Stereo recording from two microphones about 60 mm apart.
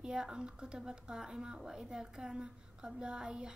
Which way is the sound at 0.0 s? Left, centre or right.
Centre.